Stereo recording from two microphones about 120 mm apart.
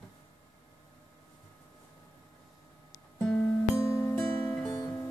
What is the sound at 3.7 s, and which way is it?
Music, 25° left (ahead or behind).